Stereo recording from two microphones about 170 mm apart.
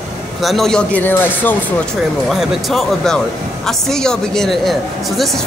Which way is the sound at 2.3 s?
Centre (ahead or behind).